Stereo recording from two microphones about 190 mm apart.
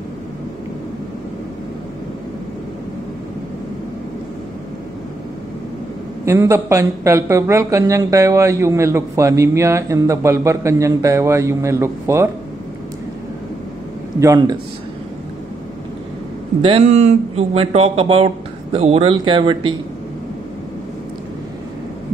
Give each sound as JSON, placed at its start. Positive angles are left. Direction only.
{"t": 6.2, "sound": "speech", "side_deg": -15}
{"t": 14.2, "sound": "speech", "side_deg": -20}
{"t": 16.6, "sound": "speech", "side_deg": -35}